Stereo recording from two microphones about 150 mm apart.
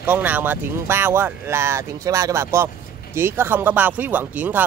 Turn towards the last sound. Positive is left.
turn(degrees=-10)  # may be behind; listen again after turning